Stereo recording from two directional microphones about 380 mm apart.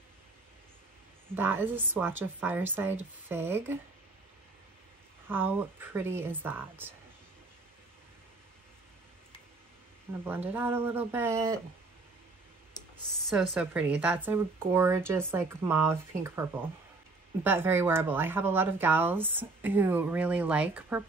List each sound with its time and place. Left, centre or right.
1.3 s speech: centre
5.3 s speech: centre
10.2 s speech: centre
12.9 s speech: centre